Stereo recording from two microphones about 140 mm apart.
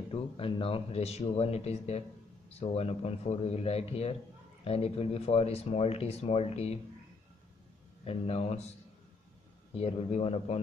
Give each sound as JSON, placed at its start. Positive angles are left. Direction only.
{"t": 0.1, "sound": "speech", "side_deg": 40}
{"t": 8.0, "sound": "speech", "side_deg": 45}
{"t": 9.8, "sound": "speech", "side_deg": 45}